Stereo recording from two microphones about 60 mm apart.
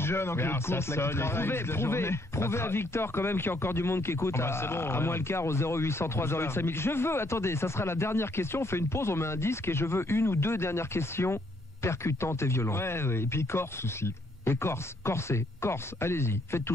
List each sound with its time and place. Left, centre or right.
0.0 s speech: left